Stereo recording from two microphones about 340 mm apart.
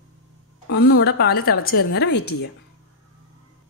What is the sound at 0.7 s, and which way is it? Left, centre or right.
A woman's voice, left.